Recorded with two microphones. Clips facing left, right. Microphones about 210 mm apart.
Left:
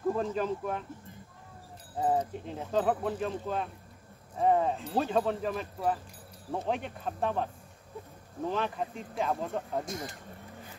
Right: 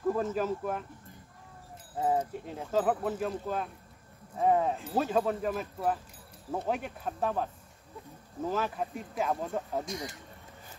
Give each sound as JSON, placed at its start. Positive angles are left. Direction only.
{"t": 0.1, "sound": "speech", "side_deg": -5}
{"t": 2.0, "sound": "speech", "side_deg": -5}
{"t": 8.5, "sound": "speech", "side_deg": -5}
{"t": 9.8, "sound": "speech", "side_deg": 50}